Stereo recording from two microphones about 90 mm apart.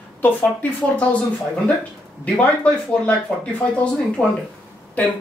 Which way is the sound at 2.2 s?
15° left (ahead or behind).